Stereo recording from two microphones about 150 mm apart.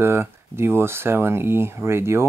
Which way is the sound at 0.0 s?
15° right (ahead or behind).